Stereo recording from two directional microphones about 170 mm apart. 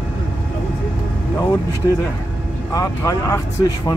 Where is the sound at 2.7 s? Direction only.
20° left (ahead or behind).